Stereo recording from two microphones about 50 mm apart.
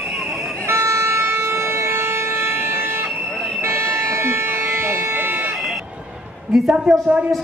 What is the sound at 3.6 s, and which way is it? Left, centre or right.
Music, right.